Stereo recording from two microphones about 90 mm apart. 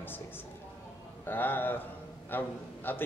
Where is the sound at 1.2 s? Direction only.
20° left (ahead or behind).